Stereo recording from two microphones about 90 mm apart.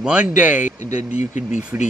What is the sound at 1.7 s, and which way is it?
Speech, 20° right (ahead or behind).